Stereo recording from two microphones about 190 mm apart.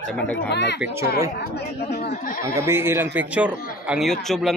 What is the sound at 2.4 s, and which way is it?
A man's voice, 15° right (ahead or behind).